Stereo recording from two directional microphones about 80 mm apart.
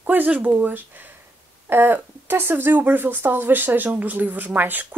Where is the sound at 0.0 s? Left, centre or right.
Right.